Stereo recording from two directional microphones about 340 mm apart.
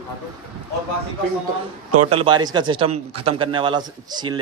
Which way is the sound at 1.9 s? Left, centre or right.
Right.